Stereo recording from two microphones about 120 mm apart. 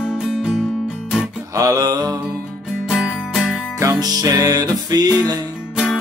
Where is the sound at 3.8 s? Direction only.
30° right (ahead or behind).